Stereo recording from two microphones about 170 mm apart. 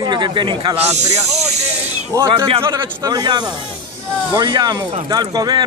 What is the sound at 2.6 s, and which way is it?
Speech, 20° right (ahead or behind).